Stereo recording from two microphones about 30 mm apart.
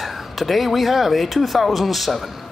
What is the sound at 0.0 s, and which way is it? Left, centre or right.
Speech, centre.